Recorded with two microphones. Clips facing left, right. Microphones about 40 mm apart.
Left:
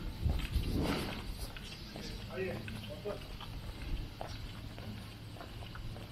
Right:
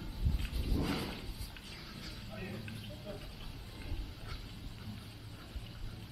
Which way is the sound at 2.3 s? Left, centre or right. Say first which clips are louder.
Left 7 dB; centre.